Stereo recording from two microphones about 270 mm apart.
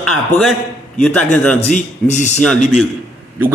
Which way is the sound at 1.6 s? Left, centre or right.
Left.